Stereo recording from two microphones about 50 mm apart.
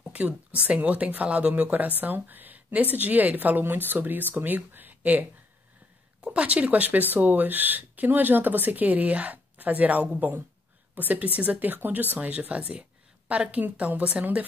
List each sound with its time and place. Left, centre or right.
0.1 s speech: right
6.2 s speech: right